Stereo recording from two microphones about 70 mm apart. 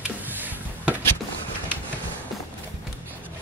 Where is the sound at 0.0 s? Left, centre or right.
Right.